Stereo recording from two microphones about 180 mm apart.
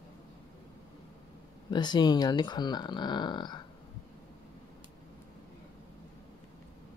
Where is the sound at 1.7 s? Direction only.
25° left (ahead or behind).